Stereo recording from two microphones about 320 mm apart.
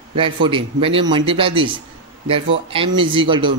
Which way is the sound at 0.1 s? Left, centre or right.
Centre.